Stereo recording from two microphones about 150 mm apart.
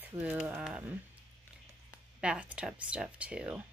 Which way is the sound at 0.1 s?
10° right (ahead or behind).